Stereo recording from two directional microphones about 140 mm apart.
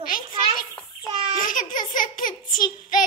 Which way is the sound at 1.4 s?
70° left (ahead or behind).